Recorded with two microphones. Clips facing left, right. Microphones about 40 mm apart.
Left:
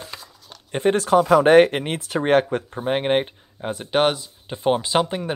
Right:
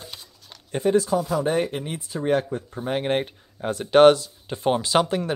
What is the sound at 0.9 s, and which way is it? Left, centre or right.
Speech, left.